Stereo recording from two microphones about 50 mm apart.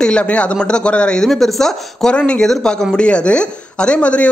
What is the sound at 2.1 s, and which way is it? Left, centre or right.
Speech, left.